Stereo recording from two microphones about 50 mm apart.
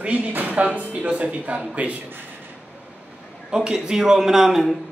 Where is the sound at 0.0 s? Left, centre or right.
Right.